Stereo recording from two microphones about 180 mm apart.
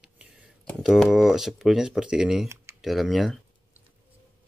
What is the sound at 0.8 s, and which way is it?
Speech, centre (ahead or behind).